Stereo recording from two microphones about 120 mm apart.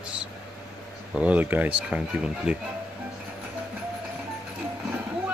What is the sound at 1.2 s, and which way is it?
Speech, 10° right (ahead or behind).